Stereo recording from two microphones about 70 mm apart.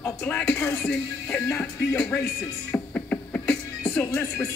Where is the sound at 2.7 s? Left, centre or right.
Left.